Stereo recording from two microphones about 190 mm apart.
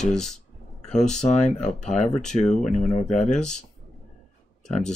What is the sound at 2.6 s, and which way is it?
Speech, 40° left (ahead or behind).